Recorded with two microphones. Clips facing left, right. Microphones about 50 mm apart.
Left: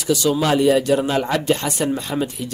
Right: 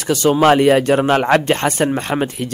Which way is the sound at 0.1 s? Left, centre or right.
Right.